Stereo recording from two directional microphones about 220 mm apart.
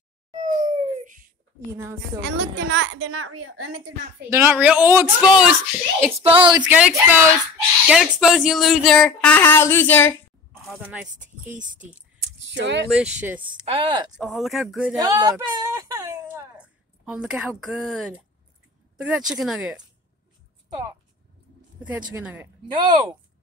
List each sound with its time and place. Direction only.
0.7 s dog: 30° right (ahead or behind)
2.2 s a woman's voice: 55° right (ahead or behind); by 3.8 s 75° right (ahead or behind)
4.3 s speech: 10° right (ahead or behind)
6.3 s speech: 20° right (ahead or behind)
6.6 s speech: 5° right (ahead or behind)
10.6 s speech: 5° right (ahead or behind)
12.4 s a sound: 55° right (ahead or behind)
12.9 s speech: 5° right (ahead or behind)
13.7 s speech: 25° right (ahead or behind)
14.2 s speech: centre (ahead or behind)
15.0 s speech: 15° right (ahead or behind)
21.8 s speech: 5° right (ahead or behind)
22.7 s speech: 20° right (ahead or behind)